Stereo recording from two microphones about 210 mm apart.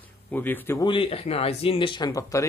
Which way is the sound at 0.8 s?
25° left (ahead or behind).